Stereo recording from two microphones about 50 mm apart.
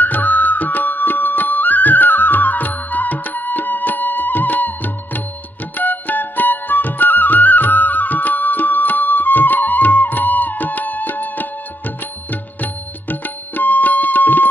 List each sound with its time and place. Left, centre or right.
0.0 s music: left
13.1 s tabla: left